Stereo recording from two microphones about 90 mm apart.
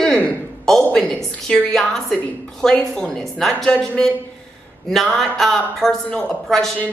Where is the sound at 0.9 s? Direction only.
5° left (ahead or behind).